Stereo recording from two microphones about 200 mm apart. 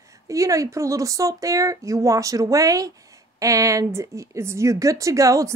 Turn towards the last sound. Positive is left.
turn(degrees=-15)  # may be behind; listen again after turning